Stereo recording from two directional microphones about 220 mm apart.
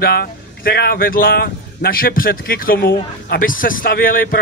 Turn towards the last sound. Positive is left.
turn(degrees=40)  # may be behind; listen again after turning